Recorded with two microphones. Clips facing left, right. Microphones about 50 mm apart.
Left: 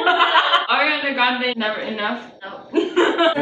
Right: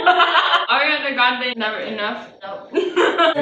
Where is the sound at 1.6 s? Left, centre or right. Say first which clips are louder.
Even; right.